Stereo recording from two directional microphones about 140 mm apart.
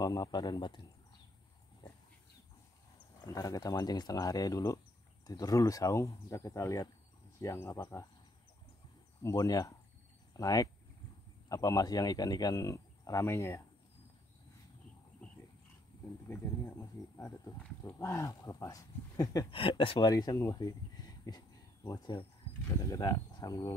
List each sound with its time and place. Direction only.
0.0 s speech: 30° left (ahead or behind)
3.3 s speech: 25° left (ahead or behind)
9.2 s speech: 25° left (ahead or behind)
16.3 s speech: 20° left (ahead or behind)
19.5 s speech: 40° left (ahead or behind)